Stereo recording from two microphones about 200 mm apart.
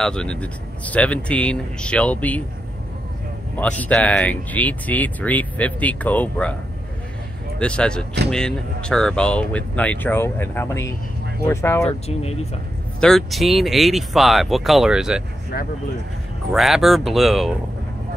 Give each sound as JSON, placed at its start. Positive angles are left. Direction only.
{"t": 0.0, "sound": "speech", "side_deg": 5}
{"t": 3.8, "sound": "speech", "side_deg": 5}
{"t": 7.5, "sound": "speech", "side_deg": 5}
{"t": 11.8, "sound": "speech", "side_deg": 30}
{"t": 13.0, "sound": "speech", "side_deg": 0}
{"t": 15.5, "sound": "speech", "side_deg": 50}
{"t": 16.5, "sound": "speech", "side_deg": 0}